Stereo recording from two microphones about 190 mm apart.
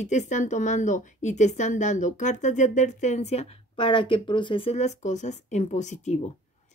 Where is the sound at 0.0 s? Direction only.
40° left (ahead or behind).